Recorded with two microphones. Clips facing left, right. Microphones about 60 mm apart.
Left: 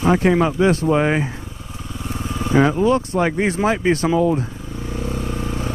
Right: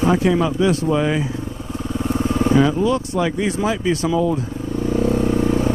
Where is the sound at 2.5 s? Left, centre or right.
Left.